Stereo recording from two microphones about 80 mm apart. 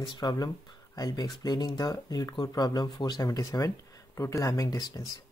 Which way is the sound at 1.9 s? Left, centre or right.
Left.